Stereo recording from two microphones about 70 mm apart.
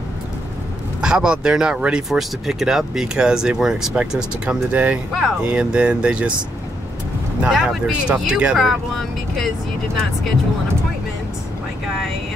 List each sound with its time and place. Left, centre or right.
1.0 s speech: centre
7.4 s speech: centre
8.5 s speech: centre